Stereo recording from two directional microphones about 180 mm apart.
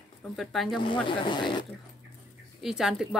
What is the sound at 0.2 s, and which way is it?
Speech, centre (ahead or behind).